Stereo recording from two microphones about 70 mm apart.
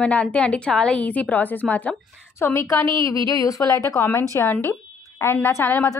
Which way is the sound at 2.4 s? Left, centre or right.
Left.